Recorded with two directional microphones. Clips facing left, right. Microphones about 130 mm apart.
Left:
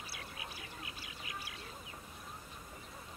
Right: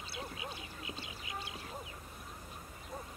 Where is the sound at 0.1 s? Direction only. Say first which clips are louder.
Right 5 dB; 25° right (ahead or behind).